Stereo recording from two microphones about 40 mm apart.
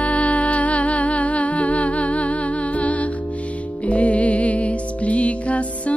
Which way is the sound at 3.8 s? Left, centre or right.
Left.